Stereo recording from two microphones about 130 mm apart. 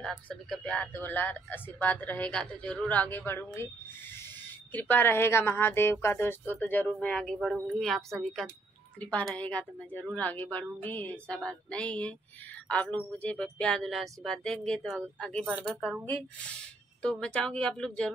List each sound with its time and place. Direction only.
0.0 s speech: 5° left (ahead or behind)
4.7 s speech: 15° left (ahead or behind)
15.5 s speech: 5° right (ahead or behind)
17.0 s speech: 10° left (ahead or behind)